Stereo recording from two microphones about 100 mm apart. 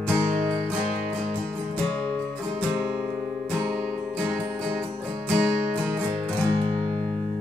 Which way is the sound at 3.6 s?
35° right (ahead or behind).